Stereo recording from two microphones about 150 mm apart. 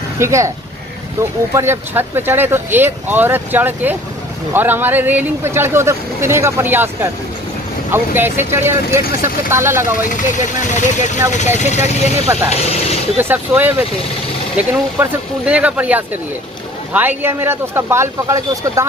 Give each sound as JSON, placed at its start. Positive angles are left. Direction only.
{"t": 0.2, "sound": "speech", "side_deg": -20}
{"t": 1.5, "sound": "speech", "side_deg": -15}
{"t": 8.2, "sound": "speech", "side_deg": -15}
{"t": 10.7, "sound": "speech", "side_deg": 50}
{"t": 13.2, "sound": "speech", "side_deg": -15}